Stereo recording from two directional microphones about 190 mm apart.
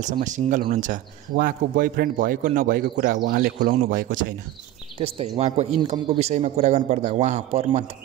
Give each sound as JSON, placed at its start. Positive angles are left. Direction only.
{"t": 0.0, "sound": "speech", "side_deg": -40}
{"t": 4.9, "sound": "a man's voice", "side_deg": -30}